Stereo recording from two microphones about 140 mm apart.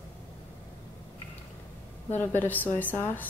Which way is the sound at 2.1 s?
15° left (ahead or behind).